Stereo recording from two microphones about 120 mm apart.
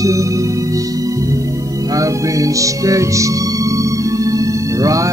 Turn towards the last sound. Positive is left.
turn(degrees=-25)  # may be behind; listen again after turning